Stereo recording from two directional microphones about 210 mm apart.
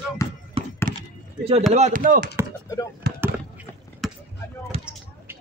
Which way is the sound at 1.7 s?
35° right (ahead or behind).